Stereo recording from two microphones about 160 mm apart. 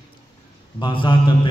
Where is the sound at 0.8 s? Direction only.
30° left (ahead or behind).